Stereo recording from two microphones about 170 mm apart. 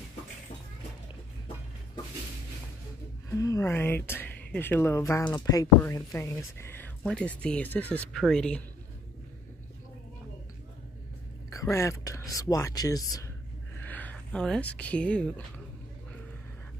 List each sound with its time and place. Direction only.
3.3 s speech: 20° left (ahead or behind)
7.0 s speech: 5° left (ahead or behind)
11.5 s speech: 15° left (ahead or behind)
13.7 s a sound: 10° left (ahead or behind)
14.8 s speech: 5° left (ahead or behind)